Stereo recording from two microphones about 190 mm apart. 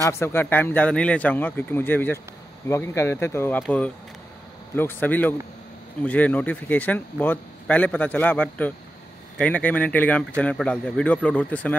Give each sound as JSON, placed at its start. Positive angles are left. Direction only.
{"t": 0.2, "sound": "a man's voice", "side_deg": 10}